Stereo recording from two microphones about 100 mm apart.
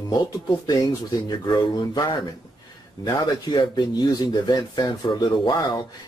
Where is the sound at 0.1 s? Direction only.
40° left (ahead or behind).